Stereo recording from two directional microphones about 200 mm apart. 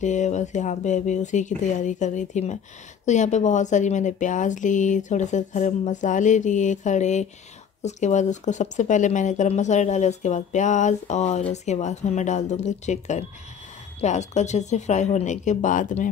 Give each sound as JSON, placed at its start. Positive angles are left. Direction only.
{"t": 0.0, "sound": "speech", "side_deg": 35}